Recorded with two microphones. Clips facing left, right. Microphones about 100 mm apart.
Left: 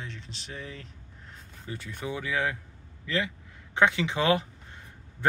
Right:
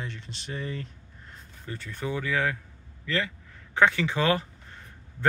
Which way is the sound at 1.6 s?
15° left (ahead or behind).